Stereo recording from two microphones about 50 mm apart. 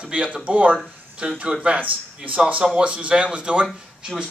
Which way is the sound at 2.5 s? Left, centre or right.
Centre.